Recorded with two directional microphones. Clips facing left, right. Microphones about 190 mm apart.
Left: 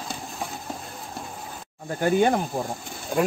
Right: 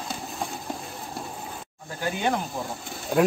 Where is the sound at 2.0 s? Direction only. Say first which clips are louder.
Left 6 dB; 50° left (ahead or behind).